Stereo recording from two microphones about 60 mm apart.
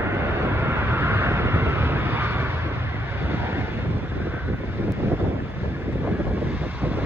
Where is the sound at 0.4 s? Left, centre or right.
Right.